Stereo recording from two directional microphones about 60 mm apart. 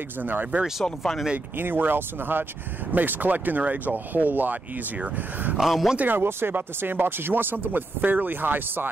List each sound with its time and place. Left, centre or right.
0.2 s speech: right
0.8 s speech: centre
1.6 s speech: right
5.6 s speech: centre
5.9 s speech: right